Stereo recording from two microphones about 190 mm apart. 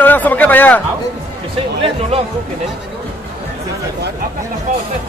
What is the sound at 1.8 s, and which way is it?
Speech, 30° right (ahead or behind).